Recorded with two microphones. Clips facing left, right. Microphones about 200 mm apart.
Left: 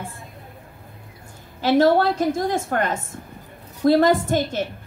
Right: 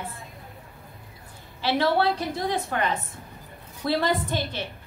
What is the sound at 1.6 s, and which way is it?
A woman's voice, 45° left (ahead or behind).